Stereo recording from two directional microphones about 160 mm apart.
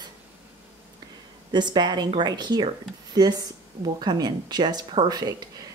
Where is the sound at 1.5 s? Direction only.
30° right (ahead or behind).